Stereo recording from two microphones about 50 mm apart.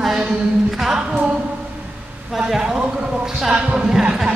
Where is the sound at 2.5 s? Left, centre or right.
Centre.